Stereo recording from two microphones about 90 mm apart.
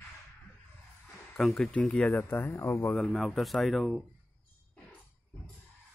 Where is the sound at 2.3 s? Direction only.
25° left (ahead or behind).